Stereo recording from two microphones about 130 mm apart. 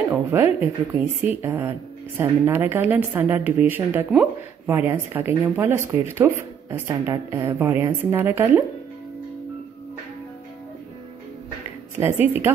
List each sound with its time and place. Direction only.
0.3 s speech: 15° right (ahead or behind)
12.0 s speech: 15° right (ahead or behind)